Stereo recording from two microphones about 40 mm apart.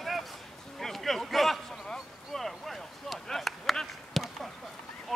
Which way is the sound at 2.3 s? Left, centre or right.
Centre.